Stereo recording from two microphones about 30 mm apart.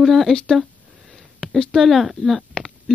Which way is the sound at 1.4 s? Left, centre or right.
Left.